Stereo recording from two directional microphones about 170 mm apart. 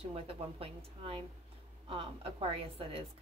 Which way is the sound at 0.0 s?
35° right (ahead or behind).